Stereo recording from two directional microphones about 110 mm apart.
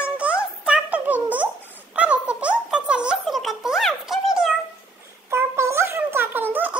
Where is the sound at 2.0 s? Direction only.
10° right (ahead or behind).